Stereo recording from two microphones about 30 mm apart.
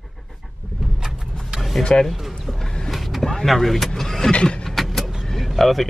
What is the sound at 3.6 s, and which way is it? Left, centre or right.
Vehicle, centre.